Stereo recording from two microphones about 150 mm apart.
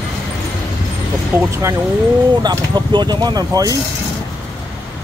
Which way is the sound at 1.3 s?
15° right (ahead or behind).